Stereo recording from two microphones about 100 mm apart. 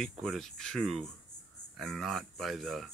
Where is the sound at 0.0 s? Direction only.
5° left (ahead or behind).